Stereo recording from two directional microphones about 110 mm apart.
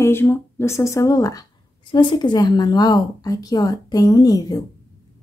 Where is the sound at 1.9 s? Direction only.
45° left (ahead or behind).